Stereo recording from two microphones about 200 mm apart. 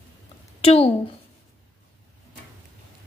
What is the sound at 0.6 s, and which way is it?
Speech, 30° left (ahead or behind).